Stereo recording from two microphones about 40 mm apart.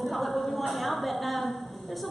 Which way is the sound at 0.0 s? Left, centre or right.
Centre.